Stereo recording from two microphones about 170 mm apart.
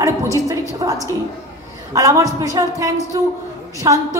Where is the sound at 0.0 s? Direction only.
20° right (ahead or behind).